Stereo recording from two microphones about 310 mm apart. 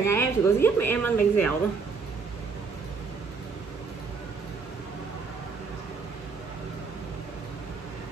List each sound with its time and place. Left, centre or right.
0.0 s a woman's voice: centre